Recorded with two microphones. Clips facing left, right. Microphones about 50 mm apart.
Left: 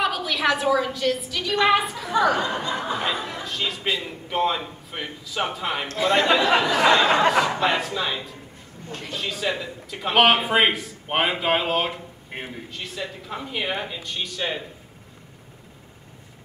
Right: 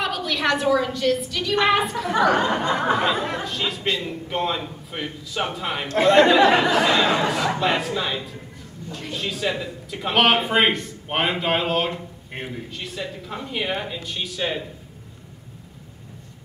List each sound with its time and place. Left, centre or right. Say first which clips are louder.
0.0 s a woman's voice: left 1 dB; centre
2.4 s a sound: right 5 dB; right
3.2 s speech: right 5 dB; right
3.4 s speech: right 1 dB; centre
6.0 s speech: right 5 dB; centre
6.4 s a sound: right 3 dB; right
7.2 s speech: left 2 dB; centre